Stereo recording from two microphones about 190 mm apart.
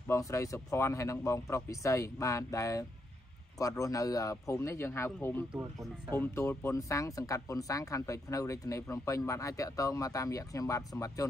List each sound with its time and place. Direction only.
0.1 s speech: 15° left (ahead or behind)
5.5 s speech: 5° right (ahead or behind)
6.1 s speech: 15° left (ahead or behind)